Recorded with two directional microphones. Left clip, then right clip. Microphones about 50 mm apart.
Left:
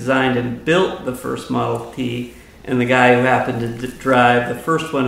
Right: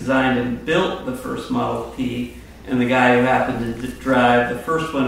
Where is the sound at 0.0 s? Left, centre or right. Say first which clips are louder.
Left 1 dB; left.